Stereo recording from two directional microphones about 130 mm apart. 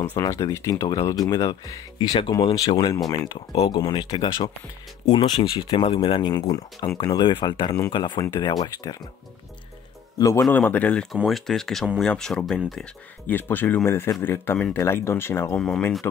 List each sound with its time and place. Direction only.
0.1 s speech: 25° left (ahead or behind)
10.1 s a man's voice: 25° left (ahead or behind)
10.5 s speech: 15° left (ahead or behind)
13.3 s speech: 15° left (ahead or behind)
15.5 s speech: 5° left (ahead or behind)